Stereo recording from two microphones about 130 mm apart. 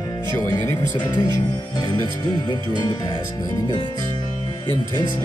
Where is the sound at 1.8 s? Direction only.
35° left (ahead or behind).